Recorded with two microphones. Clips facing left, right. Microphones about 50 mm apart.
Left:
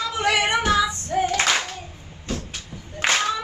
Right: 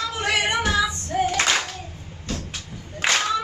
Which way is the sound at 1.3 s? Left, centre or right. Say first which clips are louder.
Even; centre.